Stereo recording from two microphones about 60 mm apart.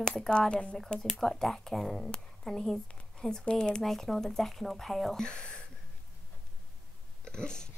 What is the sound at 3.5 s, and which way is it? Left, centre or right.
Speech, centre.